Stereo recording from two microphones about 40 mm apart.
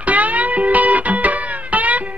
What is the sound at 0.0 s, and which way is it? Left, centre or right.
Music, right.